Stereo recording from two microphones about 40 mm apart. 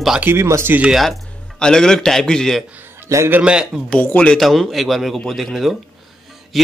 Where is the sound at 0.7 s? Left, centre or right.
Right.